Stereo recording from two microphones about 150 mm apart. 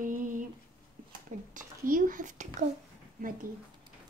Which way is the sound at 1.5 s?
65° right (ahead or behind).